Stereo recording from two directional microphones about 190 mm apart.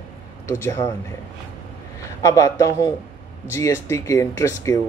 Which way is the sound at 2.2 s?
15° left (ahead or behind).